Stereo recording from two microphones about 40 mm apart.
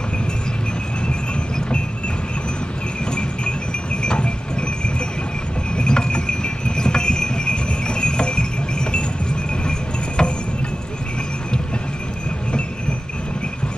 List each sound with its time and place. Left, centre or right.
1.0 s train: left
3.1 s a sound: left
9.7 s cricket: left